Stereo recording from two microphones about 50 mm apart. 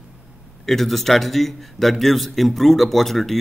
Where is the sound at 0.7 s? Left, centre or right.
Centre.